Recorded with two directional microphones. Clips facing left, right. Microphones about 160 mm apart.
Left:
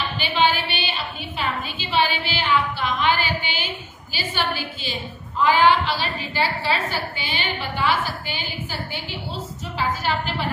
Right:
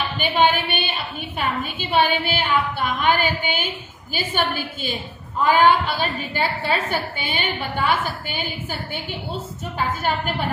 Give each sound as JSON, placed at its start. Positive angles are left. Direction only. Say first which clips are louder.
{"t": 0.4, "sound": "a woman's voice", "louder": "right 2 dB", "side_deg": -50}